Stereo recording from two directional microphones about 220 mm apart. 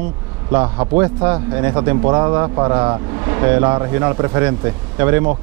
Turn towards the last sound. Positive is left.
turn(degrees=-15)  # may be behind; listen again after turning